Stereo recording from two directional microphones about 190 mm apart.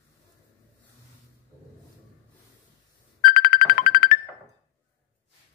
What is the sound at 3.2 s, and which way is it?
Music, 50° left (ahead or behind).